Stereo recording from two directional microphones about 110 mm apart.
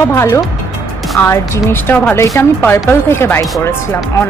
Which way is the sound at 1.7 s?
15° left (ahead or behind).